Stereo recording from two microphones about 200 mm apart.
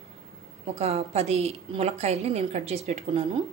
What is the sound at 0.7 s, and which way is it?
A woman's voice, 30° right (ahead or behind).